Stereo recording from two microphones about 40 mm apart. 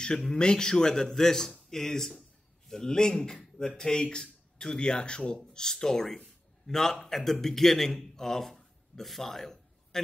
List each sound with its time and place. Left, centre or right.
0.0 s a man's voice: left